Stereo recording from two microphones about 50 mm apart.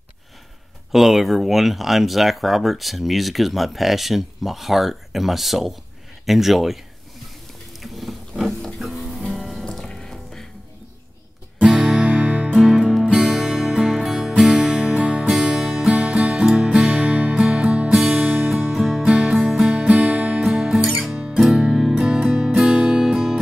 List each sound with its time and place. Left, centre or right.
0.9 s speech: centre
7.8 s pig: centre
8.7 s music: centre
11.6 s music: centre
12.1 s music: right
12.4 s music: centre
19.0 s music: centre
19.7 s music: right
20.4 s music: centre